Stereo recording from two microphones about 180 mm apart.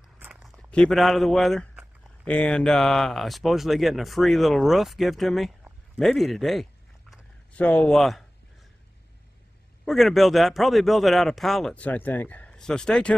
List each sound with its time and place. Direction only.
0.2 s speech: 5° right (ahead or behind)
9.8 s a man's voice: centre (ahead or behind)